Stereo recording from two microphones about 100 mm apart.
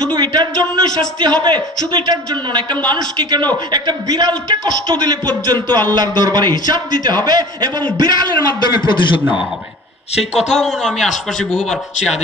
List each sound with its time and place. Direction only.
0.1 s a sound: 45° right (ahead or behind)
1.4 s a man's voice: 50° right (ahead or behind)
8.9 s a man's voice: 55° left (ahead or behind)
10.3 s a man's voice: centre (ahead or behind)